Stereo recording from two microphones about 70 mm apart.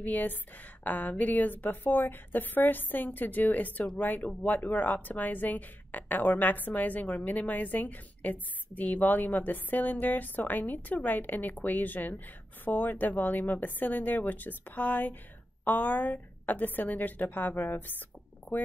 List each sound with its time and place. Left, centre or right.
0.0 s speech: left